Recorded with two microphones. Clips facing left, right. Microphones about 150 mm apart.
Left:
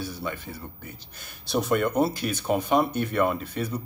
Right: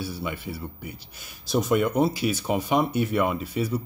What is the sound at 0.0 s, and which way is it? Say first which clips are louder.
Speech: right 1 dB; 10° right (ahead or behind).